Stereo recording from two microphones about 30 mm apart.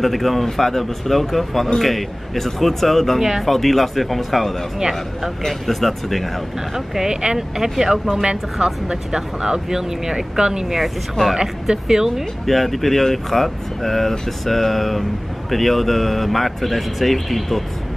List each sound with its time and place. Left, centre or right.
0.0 s speech: centre
3.2 s speech: centre
3.4 s speech: centre
6.7 s speech: centre
11.2 s speech: left
11.7 s speech: centre
12.4 s speech: centre